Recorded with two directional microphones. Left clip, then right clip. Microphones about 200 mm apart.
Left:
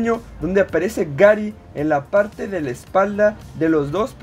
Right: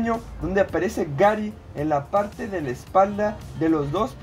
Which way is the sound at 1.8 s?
50° left (ahead or behind).